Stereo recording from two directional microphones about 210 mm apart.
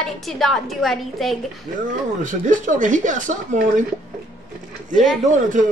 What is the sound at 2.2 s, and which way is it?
Speech, 35° right (ahead or behind).